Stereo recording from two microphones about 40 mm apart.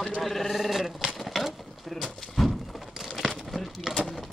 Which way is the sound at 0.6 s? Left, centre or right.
Centre.